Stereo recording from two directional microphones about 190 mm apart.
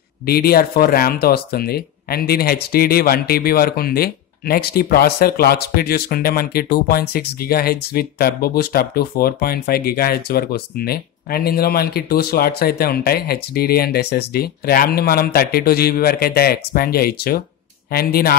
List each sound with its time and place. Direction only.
0.3 s speech: 55° left (ahead or behind)